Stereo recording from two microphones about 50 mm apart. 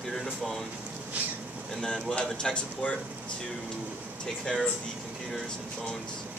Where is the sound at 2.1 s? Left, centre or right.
Left.